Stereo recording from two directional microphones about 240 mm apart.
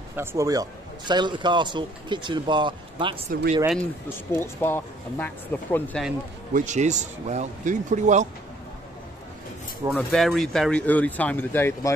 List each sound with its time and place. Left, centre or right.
0.1 s a man's voice: centre
3.3 s speech: right
4.3 s speech: centre
6.5 s a man's voice: right
9.8 s speech: centre